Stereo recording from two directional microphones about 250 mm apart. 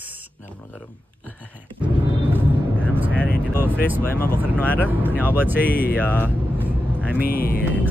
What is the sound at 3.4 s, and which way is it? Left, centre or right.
Speech, centre.